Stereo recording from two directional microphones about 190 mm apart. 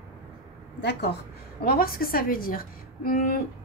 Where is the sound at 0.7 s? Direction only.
60° left (ahead or behind).